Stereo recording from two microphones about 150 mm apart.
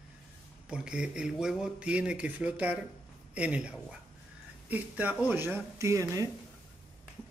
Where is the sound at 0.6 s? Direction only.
5° right (ahead or behind).